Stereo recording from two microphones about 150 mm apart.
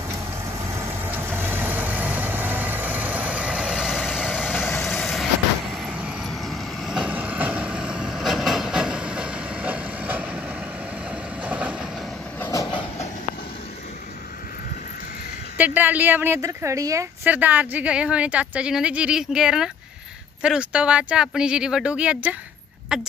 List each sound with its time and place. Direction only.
1.1 s vehicle: 15° right (ahead or behind)
4.6 s vehicle: 15° left (ahead or behind)
4.8 s vehicle: centre (ahead or behind)
11.4 s train: 10° right (ahead or behind)
12.4 s train: 20° left (ahead or behind)
15.5 s a woman's voice: 10° right (ahead or behind)